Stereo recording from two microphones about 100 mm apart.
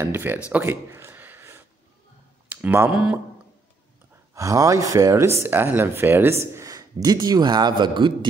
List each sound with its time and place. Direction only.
0.0 s speech: 20° right (ahead or behind)
0.5 s a sound: 20° right (ahead or behind)
2.5 s speech: 20° right (ahead or behind)
4.3 s speech: 35° right (ahead or behind); by 8.3 s 50° right (ahead or behind)